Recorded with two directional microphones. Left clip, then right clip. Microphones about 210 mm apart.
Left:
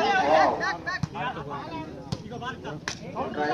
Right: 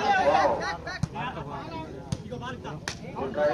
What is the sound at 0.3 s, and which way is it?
Chatter, 20° right (ahead or behind).